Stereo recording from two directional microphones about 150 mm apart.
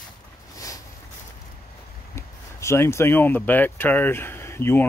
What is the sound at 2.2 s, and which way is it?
Speech, 20° left (ahead or behind).